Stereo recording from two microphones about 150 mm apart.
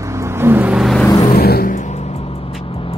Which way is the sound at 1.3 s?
90° left.